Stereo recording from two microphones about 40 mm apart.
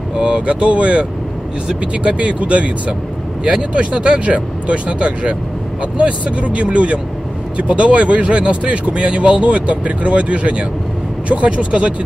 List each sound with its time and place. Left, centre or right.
0.1 s speech: right
2.0 s speech: right